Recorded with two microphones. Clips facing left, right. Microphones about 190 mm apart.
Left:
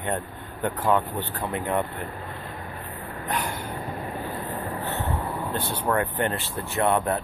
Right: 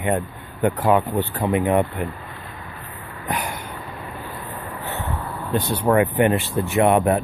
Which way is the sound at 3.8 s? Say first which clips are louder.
Left 2 dB; 35° left (ahead or behind).